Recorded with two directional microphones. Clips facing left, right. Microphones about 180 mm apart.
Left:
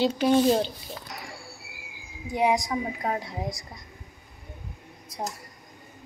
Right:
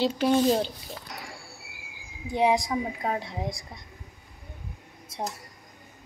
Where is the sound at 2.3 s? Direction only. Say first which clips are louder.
Right 1 dB; 30° right (ahead or behind).